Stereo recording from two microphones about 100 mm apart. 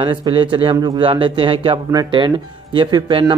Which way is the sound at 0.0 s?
55° right (ahead or behind).